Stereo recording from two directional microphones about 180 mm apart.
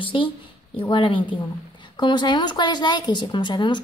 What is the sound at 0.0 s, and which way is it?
A woman's voice, 30° left (ahead or behind).